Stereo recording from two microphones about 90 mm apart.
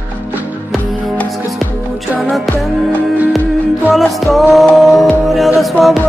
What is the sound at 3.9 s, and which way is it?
Music, centre (ahead or behind).